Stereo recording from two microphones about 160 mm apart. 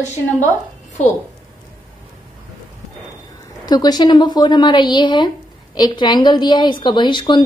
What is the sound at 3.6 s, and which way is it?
A woman's voice, 25° left (ahead or behind).